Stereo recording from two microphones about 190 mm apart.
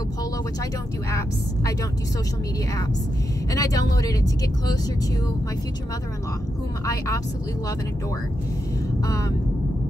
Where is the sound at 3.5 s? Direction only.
20° left (ahead or behind).